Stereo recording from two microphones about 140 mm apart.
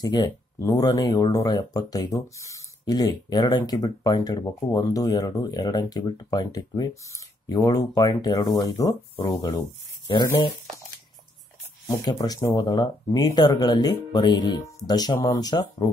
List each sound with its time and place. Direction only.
0.0 s speech: 25° left (ahead or behind)
12.0 s speech: 25° left (ahead or behind)